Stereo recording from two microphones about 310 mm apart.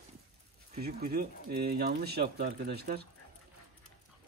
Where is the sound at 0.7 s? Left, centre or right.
Right.